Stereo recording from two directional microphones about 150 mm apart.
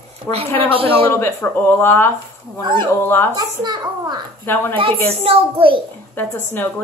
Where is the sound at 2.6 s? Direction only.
30° right (ahead or behind).